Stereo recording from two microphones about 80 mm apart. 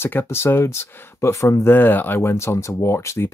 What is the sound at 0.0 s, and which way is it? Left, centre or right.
Speech, left.